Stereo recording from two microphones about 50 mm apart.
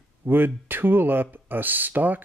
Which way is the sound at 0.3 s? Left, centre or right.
Right.